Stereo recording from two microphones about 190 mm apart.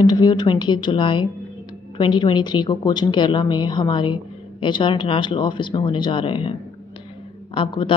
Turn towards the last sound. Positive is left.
turn(degrees=25)  # may be behind; listen again after turning